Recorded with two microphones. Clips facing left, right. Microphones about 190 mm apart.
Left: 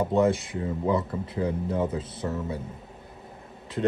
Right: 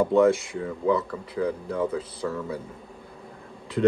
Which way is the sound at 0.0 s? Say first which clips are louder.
Right 3 dB; 20° left (ahead or behind).